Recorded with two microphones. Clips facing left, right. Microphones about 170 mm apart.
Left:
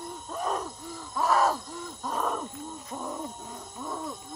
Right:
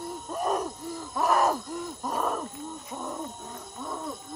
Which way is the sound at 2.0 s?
5° right (ahead or behind).